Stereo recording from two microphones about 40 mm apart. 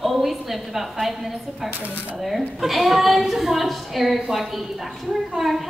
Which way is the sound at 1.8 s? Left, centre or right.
Right.